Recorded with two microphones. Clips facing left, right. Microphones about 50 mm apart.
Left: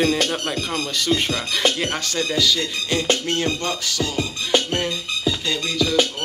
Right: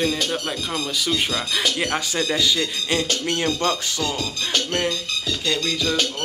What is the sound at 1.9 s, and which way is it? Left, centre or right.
Speech, right.